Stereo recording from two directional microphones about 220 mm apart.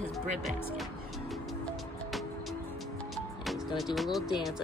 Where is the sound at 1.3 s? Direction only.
Centre (ahead or behind).